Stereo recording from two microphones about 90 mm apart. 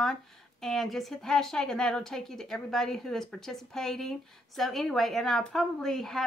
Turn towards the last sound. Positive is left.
turn(degrees=5)  # may be behind; listen again after turning